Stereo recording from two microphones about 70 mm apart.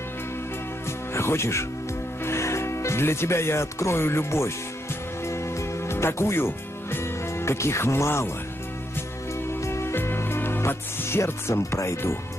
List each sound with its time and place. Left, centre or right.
1.1 s speech: left
5.2 s music: left
9.5 s music: left